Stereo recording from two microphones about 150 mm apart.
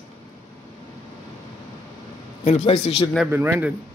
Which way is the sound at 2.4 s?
45° left (ahead or behind).